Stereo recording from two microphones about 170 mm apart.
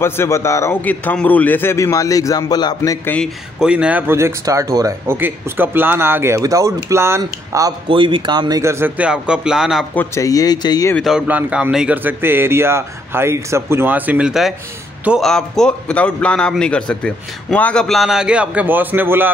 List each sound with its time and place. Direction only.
0.0 s a man's voice: 15° left (ahead or behind)
3.2 s speech: 5° right (ahead or behind)
7.9 s speech: 30° right (ahead or behind); by 9.8 s 5° right (ahead or behind)
9.9 s speech: 20° left (ahead or behind)
11.0 s a man's voice: 5° right (ahead or behind)